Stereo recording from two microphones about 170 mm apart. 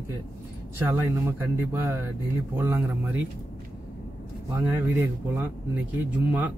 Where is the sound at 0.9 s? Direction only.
15° right (ahead or behind).